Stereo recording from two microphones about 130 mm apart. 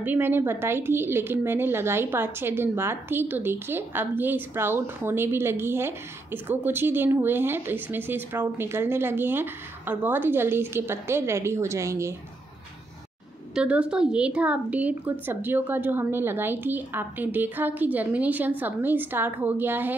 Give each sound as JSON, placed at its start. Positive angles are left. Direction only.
{"t": 0.0, "sound": "speech", "side_deg": -15}
{"t": 13.6, "sound": "speech", "side_deg": -10}